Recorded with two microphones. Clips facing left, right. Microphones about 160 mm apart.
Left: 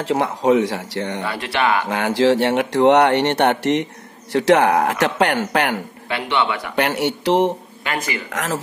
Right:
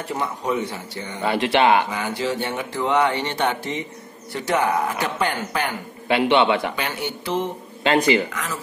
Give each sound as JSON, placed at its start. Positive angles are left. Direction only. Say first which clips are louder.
{"t": 0.0, "sound": "speech", "louder": "left 8 dB", "side_deg": 90}
{"t": 1.2, "sound": "speech", "louder": "right 6 dB", "side_deg": -20}
{"t": 1.9, "sound": "speech", "louder": "left 9 dB", "side_deg": 85}
{"t": 4.3, "sound": "speech", "louder": "left 7 dB", "side_deg": 90}
{"t": 6.0, "sound": "speech", "louder": "right 5 dB", "side_deg": -20}
{"t": 6.7, "sound": "speech", "louder": "left 8 dB", "side_deg": 70}